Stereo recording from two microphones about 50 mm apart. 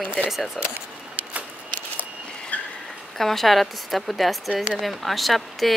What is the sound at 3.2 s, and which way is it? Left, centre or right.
Speech, centre.